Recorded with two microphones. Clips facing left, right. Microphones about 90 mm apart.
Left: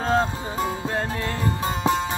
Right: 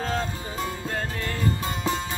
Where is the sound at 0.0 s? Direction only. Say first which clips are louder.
Left 6 dB; 35° left (ahead or behind).